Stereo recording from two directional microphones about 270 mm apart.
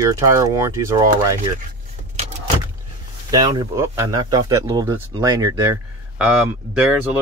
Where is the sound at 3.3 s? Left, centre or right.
Centre.